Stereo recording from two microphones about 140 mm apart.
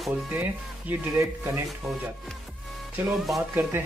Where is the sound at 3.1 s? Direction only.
Centre (ahead or behind).